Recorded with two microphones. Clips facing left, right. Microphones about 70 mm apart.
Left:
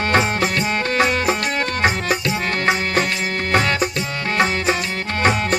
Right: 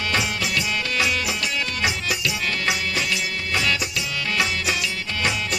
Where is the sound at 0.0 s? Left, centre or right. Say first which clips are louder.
Left 7 dB; left.